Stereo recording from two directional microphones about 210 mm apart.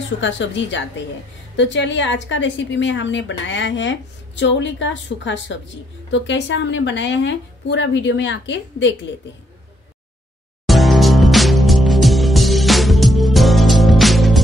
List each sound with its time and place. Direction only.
0.2 s a woman's voice: 60° left (ahead or behind)
10.7 s music: centre (ahead or behind)